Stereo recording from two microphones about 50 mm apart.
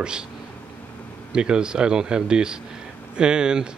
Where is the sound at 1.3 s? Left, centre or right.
Centre.